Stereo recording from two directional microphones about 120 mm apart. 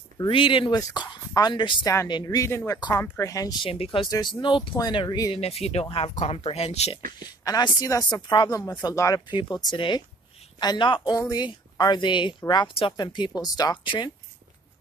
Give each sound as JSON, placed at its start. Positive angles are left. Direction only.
{"t": 0.3, "sound": "speech", "side_deg": 45}
{"t": 0.7, "sound": "speech", "side_deg": 35}
{"t": 2.2, "sound": "speech", "side_deg": 25}
{"t": 3.6, "sound": "speech", "side_deg": 50}
{"t": 4.1, "sound": "speech", "side_deg": 40}
{"t": 5.3, "sound": "speech", "side_deg": 55}
{"t": 7.4, "sound": "speech", "side_deg": 30}